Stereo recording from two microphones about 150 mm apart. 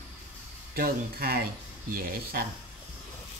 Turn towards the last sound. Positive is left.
turn(degrees=-75)  # may be behind; listen again after turning